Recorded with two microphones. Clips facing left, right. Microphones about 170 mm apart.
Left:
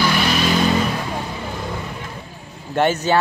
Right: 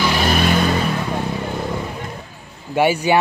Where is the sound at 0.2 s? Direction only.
50° right (ahead or behind).